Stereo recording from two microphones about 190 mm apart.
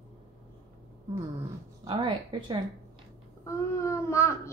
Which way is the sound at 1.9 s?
25° right (ahead or behind).